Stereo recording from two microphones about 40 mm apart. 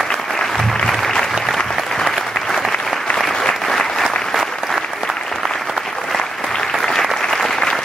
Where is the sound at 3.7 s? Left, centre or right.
Centre.